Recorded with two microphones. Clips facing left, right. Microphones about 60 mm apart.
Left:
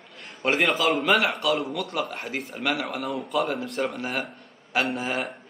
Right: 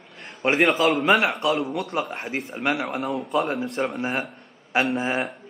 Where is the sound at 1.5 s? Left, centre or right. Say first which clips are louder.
Right 2 dB; centre.